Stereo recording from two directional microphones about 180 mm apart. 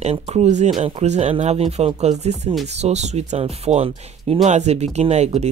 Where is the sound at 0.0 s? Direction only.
35° right (ahead or behind).